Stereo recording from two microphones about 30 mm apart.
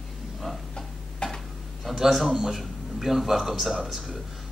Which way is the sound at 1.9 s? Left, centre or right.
Centre.